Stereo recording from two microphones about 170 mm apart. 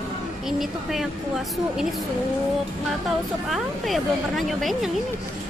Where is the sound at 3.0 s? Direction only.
Centre (ahead or behind).